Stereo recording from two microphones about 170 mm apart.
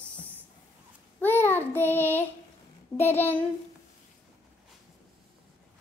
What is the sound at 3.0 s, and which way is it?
Speech, 15° left (ahead or behind).